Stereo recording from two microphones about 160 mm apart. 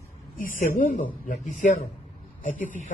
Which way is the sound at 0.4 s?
55° left (ahead or behind).